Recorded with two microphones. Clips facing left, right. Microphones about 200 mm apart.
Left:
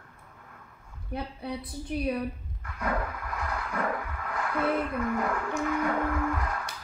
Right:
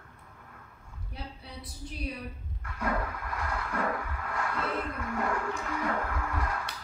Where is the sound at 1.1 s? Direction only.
60° left (ahead or behind).